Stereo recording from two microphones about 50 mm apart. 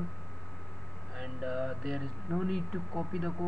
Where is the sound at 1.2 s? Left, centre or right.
Centre.